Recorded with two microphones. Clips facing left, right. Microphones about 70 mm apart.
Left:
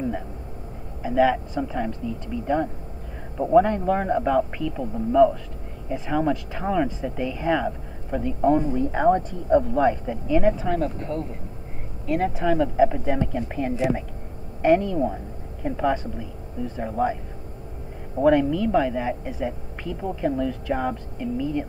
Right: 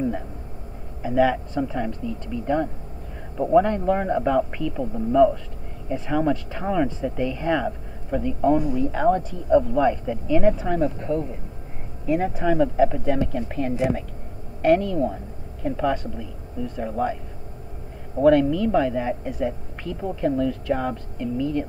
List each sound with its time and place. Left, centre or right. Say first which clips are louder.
1.0 s a man's voice: even; centre
8.9 s speech: left 2 dB; left; by 10.5 s centre
10.6 s speech: right 1 dB; centre
12.1 s a man's voice: right 1 dB; centre
12.7 s speech: even; centre